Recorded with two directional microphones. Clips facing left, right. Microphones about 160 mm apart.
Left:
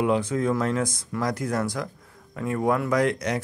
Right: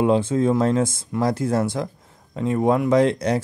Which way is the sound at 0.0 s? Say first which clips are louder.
Right 5 dB; 30° right (ahead or behind).